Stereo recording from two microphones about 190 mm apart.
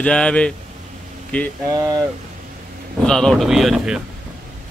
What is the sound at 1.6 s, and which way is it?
Speech, 20° right (ahead or behind).